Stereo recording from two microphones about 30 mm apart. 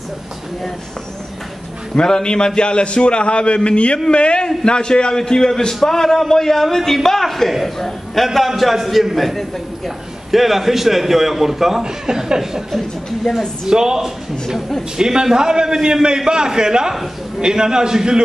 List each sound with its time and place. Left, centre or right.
2.0 s a man's voice: left; by 8.3 s centre
8.3 s a man's voice: centre
11.8 s speech: right
13.3 s a man's voice: centre
13.7 s speech: right